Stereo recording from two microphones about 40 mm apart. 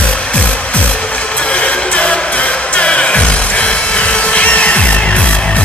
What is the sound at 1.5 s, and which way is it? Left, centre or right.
Music, left.